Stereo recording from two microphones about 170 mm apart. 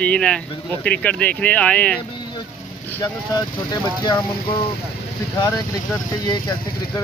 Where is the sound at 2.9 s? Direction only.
20° left (ahead or behind).